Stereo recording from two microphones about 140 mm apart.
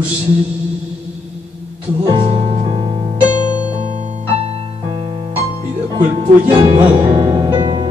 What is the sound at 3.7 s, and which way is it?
Piano, 55° right (ahead or behind).